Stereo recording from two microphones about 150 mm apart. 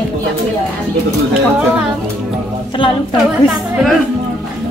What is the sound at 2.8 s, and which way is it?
Speech, 35° left (ahead or behind).